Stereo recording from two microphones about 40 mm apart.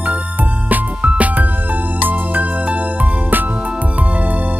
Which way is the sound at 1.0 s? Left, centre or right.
Right.